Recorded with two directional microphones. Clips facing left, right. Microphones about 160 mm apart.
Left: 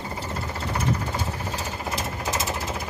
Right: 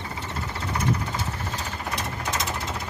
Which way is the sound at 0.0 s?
40° left (ahead or behind).